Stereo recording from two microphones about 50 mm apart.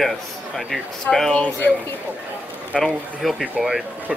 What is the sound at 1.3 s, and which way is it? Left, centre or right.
Speech, left.